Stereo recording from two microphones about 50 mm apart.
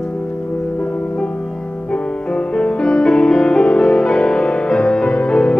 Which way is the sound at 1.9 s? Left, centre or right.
Centre.